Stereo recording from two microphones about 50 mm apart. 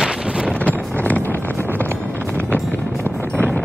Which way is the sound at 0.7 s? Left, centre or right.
Left.